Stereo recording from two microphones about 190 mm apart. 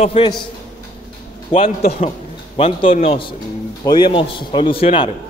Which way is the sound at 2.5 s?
30° left (ahead or behind).